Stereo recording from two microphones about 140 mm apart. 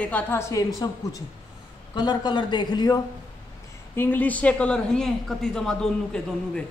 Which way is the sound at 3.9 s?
15° left (ahead or behind).